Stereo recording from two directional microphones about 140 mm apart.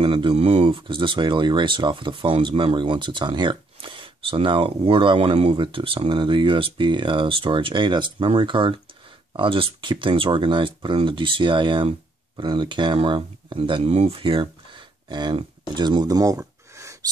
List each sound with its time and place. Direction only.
0.0 s speech: 40° right (ahead or behind); by 16.9 s 20° right (ahead or behind)